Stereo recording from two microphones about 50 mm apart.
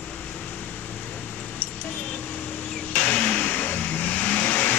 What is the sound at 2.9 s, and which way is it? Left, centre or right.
Vehicle, left.